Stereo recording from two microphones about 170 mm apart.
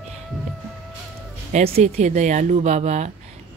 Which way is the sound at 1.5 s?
40° right (ahead or behind).